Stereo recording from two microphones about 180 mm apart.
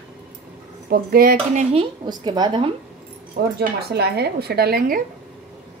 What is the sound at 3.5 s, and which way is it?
Speech, 65° right (ahead or behind).